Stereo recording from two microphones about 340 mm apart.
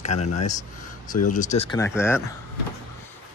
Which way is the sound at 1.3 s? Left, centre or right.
Left.